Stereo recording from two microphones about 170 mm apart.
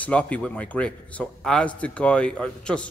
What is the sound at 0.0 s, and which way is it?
A man's voice, 10° left (ahead or behind).